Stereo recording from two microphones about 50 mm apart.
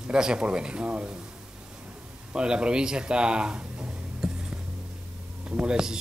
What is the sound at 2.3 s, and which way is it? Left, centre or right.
Speech, centre.